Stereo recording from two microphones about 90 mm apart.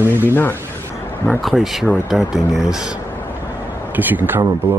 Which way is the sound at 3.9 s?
20° right (ahead or behind).